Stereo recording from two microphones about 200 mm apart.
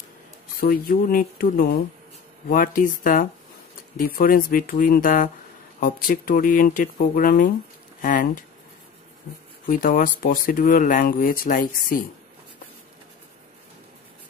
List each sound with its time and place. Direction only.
0.6 s speech: 45° left (ahead or behind)
9.7 s speech: 40° left (ahead or behind)